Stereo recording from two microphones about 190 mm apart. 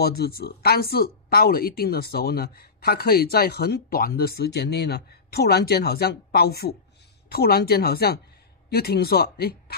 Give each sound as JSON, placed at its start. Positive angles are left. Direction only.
{"t": 0.0, "sound": "speech", "side_deg": 55}